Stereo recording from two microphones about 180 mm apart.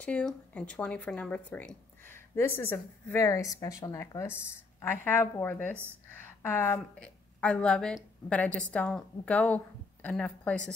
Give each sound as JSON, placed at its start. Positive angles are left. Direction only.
{"t": 0.0, "sound": "a woman's voice", "side_deg": 5}